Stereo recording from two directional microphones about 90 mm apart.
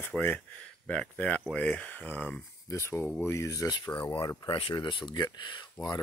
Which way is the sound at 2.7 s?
40° left (ahead or behind).